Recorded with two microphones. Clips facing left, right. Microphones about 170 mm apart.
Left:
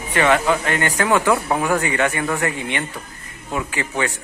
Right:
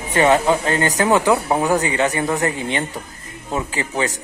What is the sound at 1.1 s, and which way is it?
Speech, 20° right (ahead or behind).